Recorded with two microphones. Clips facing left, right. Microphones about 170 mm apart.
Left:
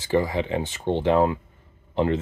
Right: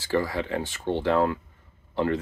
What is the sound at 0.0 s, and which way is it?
Speech, 20° left (ahead or behind).